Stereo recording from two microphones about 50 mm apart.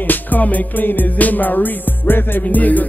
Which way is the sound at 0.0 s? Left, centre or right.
Left.